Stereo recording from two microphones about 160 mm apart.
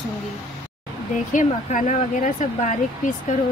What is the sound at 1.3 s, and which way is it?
Speech, 50° left (ahead or behind).